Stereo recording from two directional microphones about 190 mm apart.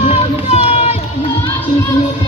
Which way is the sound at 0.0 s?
30° left (ahead or behind).